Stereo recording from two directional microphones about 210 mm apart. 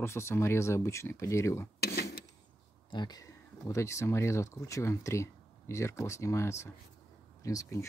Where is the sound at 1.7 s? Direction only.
50° left (ahead or behind).